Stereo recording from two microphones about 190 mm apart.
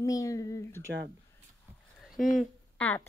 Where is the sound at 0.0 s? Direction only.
15° left (ahead or behind).